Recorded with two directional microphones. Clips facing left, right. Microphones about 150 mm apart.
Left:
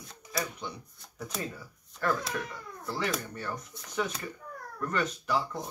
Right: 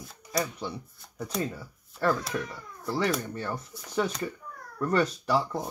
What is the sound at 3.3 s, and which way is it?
Speech, 30° right (ahead or behind).